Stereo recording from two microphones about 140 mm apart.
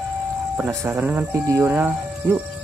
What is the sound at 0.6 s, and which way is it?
Speech, 20° right (ahead or behind).